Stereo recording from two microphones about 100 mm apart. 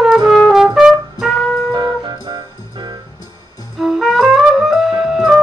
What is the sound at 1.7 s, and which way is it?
Music, 45° right (ahead or behind).